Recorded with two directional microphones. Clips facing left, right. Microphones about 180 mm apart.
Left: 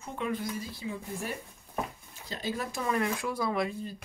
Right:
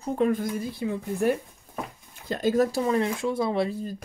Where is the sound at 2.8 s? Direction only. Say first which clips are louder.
Right 6 dB; 25° right (ahead or behind).